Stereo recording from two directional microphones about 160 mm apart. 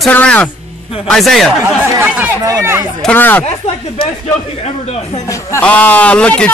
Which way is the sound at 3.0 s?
10° left (ahead or behind).